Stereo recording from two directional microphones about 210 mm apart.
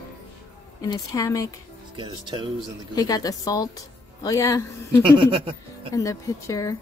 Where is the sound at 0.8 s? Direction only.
20° left (ahead or behind).